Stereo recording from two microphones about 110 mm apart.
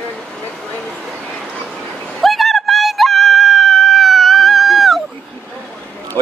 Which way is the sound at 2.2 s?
Centre (ahead or behind).